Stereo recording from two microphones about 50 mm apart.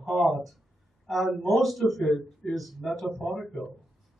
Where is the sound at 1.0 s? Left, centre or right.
Centre.